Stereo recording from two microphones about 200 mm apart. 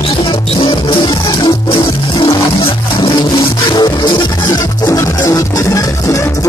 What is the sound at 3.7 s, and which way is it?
Music, 20° left (ahead or behind).